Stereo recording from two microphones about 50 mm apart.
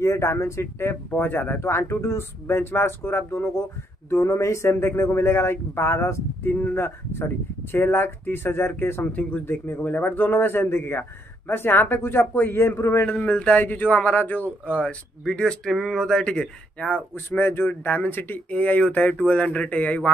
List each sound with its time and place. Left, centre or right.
0.0 s speech: left
1.1 s speech: left
4.1 s speech: left
6.7 s a man's voice: left
9.0 s speech: left
9.5 s a man's voice: left
11.4 s a man's voice: left
13.1 s speech: centre
13.7 s speech: left
14.7 s speech: left
15.6 s speech: centre
17.1 s a man's voice: left
18.5 s speech: left